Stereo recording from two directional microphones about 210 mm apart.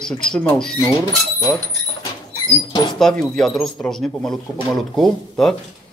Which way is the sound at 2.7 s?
20° left (ahead or behind).